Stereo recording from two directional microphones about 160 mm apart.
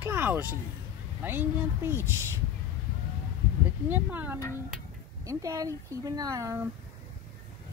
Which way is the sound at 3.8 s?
10° right (ahead or behind).